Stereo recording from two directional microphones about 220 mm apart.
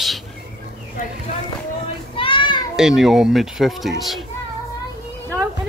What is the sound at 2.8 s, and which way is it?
Speech, centre (ahead or behind).